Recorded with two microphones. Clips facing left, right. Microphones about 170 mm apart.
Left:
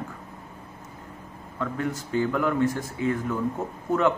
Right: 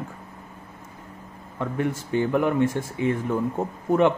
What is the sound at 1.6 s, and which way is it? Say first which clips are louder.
Speech: right 3 dB; 20° right (ahead or behind).